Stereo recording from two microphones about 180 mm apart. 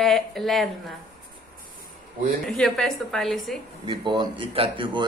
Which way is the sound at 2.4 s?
5° left (ahead or behind).